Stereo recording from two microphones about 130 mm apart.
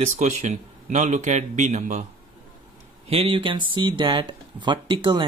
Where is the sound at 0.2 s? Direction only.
70° right (ahead or behind).